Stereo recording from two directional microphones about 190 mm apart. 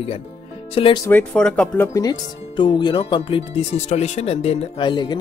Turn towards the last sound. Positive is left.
turn(degrees=25)  # may be behind; listen again after turning